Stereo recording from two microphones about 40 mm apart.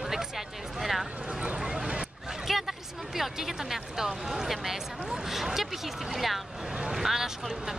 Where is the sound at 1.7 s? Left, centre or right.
Centre.